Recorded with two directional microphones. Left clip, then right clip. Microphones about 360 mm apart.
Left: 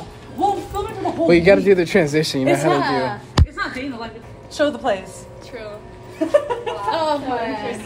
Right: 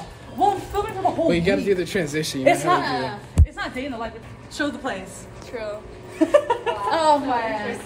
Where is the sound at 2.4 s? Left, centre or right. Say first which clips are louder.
Right 1 dB; right.